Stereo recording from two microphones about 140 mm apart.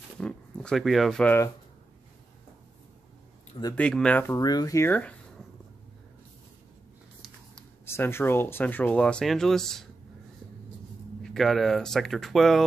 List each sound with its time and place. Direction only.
0.2 s speech: 5° left (ahead or behind)
3.7 s speech: 5° left (ahead or behind)
4.4 s speech: 25° left (ahead or behind)
7.8 s speech: 15° left (ahead or behind)
11.2 s speech: centre (ahead or behind)